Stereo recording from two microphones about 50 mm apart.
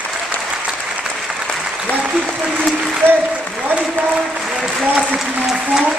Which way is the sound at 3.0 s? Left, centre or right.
Left.